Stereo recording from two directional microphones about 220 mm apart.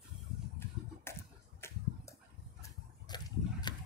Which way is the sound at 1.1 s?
10° left (ahead or behind).